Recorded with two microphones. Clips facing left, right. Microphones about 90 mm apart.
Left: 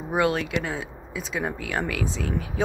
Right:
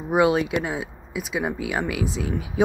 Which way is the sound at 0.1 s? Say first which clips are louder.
Right 4 dB; 15° right (ahead or behind).